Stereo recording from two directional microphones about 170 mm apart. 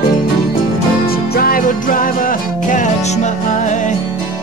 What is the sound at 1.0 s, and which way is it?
Music, 60° left (ahead or behind).